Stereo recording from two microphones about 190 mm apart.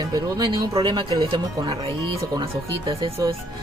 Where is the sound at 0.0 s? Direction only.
20° right (ahead or behind).